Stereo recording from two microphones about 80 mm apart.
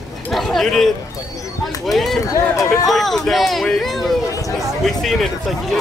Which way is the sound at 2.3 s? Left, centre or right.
Left.